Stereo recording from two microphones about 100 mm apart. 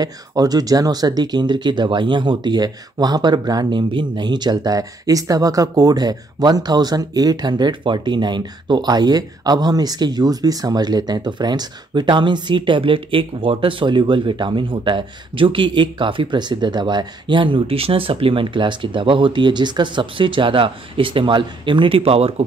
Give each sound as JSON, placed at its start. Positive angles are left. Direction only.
{"t": 0.0, "sound": "speech", "side_deg": -40}